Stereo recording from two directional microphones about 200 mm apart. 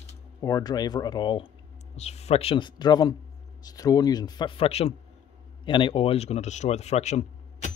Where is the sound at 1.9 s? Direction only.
30° left (ahead or behind).